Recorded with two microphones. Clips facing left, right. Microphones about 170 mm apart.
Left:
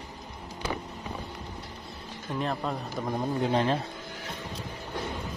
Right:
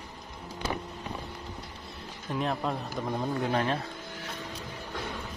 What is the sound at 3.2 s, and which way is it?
Speech, 25° left (ahead or behind).